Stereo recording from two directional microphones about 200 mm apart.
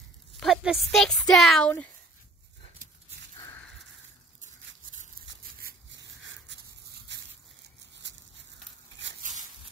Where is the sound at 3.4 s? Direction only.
10° left (ahead or behind).